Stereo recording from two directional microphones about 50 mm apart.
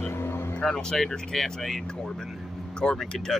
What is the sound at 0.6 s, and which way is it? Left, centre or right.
Speech, centre.